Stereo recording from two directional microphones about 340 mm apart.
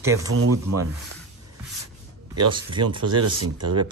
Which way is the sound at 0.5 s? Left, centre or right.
Right.